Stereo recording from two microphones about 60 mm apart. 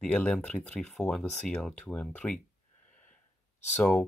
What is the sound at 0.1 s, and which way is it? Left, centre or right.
Speech, left.